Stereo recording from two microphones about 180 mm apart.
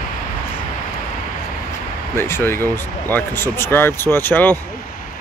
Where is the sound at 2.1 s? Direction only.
15° left (ahead or behind).